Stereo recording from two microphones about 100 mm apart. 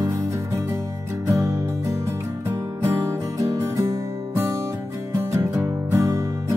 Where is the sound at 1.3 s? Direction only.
30° right (ahead or behind).